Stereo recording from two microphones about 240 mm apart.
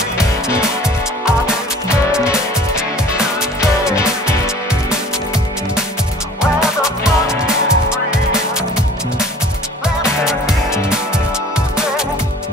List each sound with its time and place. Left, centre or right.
0.2 s music: centre
3.6 s music: centre
6.4 s music: centre
10.2 s music: centre